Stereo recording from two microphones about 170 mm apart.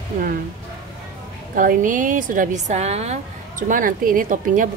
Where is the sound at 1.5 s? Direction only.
50° right (ahead or behind).